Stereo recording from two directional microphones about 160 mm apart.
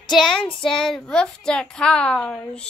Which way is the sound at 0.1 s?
Centre (ahead or behind).